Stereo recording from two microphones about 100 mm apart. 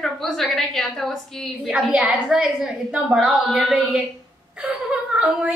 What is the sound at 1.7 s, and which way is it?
A woman's voice, 10° right (ahead or behind).